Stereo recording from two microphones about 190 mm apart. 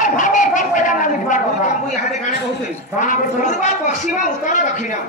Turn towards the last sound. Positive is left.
turn(degrees=40)  # may be behind; listen again after turning